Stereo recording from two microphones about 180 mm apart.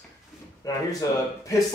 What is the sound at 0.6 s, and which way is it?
Speech, 20° left (ahead or behind).